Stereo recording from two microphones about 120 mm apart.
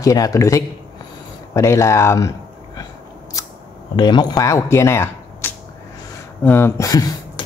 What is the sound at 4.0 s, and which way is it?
A man's voice, 40° left (ahead or behind).